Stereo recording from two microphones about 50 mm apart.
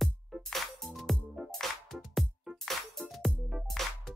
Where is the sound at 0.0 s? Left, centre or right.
Centre.